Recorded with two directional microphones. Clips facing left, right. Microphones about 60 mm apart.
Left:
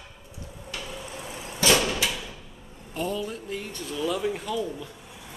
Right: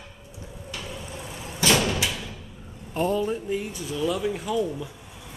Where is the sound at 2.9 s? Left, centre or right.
Right.